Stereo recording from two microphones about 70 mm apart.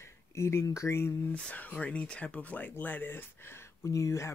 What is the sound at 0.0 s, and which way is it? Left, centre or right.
Speech, left.